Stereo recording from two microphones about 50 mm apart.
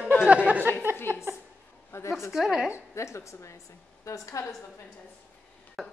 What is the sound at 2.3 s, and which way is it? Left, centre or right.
Speech, centre.